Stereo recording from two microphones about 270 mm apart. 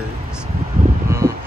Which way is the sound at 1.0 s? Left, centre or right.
Centre.